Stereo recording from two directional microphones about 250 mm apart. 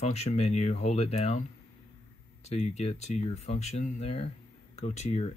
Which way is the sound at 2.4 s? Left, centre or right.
Left.